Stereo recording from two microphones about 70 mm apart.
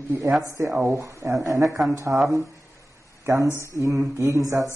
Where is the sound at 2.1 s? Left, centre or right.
Right.